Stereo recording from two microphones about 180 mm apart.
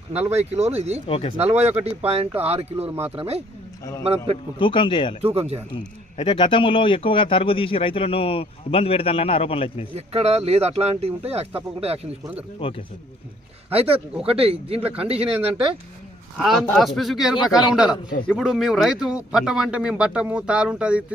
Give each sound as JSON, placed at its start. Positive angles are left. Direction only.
{"t": 0.2, "sound": "speech", "side_deg": -35}
{"t": 1.0, "sound": "a man's voice", "side_deg": 30}
{"t": 1.9, "sound": "speech", "side_deg": -35}
{"t": 4.6, "sound": "speech", "side_deg": 30}
{"t": 5.2, "sound": "speech", "side_deg": -35}
{"t": 6.1, "sound": "a man's voice", "side_deg": 30}
{"t": 9.9, "sound": "speech", "side_deg": -35}
{"t": 12.2, "sound": "speech", "side_deg": -10}
{"t": 12.5, "sound": "speech", "side_deg": 30}
{"t": 13.7, "sound": "speech", "side_deg": -35}
{"t": 16.3, "sound": "a man's voice", "side_deg": 0}